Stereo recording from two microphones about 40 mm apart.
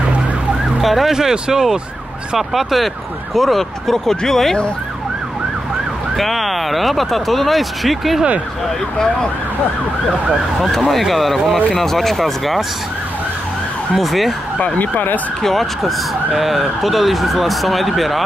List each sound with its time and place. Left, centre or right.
0.7 s ambulance: centre
1.1 s speech: centre
6.1 s speech: centre
10.9 s speech: centre
13.9 s speech: centre
14.8 s speech: left
15.4 s speech: centre